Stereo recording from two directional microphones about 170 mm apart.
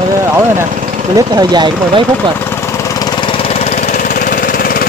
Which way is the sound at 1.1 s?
25° right (ahead or behind).